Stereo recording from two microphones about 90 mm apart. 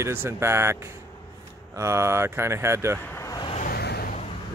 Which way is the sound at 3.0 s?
25° left (ahead or behind).